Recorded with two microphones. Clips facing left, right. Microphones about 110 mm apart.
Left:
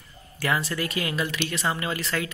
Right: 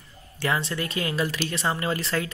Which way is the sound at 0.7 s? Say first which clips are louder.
Even; 30° right (ahead or behind).